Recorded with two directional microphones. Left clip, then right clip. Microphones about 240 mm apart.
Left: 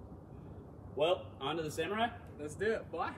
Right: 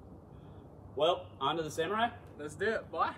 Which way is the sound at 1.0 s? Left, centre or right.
Centre.